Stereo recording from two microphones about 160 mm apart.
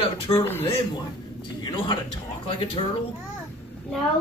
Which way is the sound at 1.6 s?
30° left (ahead or behind).